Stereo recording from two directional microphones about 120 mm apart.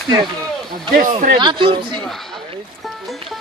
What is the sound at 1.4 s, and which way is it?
Speech, 45° right (ahead or behind).